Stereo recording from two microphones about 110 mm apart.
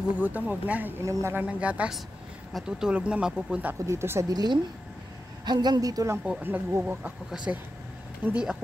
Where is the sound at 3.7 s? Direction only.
25° right (ahead or behind).